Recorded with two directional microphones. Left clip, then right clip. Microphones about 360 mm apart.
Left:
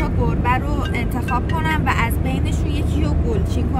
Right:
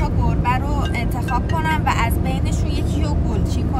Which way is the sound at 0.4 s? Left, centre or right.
Centre.